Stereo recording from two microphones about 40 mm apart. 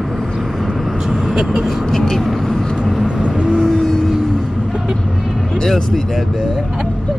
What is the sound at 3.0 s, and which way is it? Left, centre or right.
Vehicle, right.